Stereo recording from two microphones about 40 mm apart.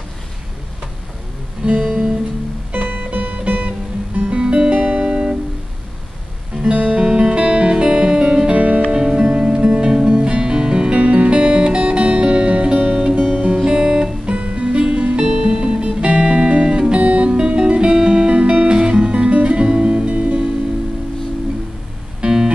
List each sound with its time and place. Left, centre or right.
1.8 s music: centre
2.7 s music: right
4.2 s music: right
6.7 s music: right
7.1 s music: right
8.5 s music: right
8.9 s music: centre; by 13.6 s right
13.7 s guitar: right
14.2 s music: right
22.2 s music: centre